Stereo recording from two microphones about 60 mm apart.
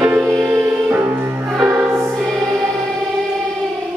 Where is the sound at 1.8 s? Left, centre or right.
Right.